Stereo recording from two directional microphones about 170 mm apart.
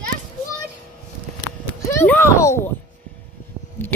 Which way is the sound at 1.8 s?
15° left (ahead or behind).